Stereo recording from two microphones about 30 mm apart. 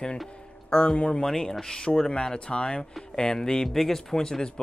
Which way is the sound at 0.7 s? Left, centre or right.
Left.